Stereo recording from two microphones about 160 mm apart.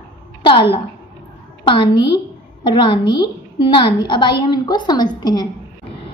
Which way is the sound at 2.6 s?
30° left (ahead or behind).